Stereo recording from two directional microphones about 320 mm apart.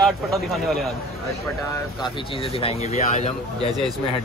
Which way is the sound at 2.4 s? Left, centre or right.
Centre.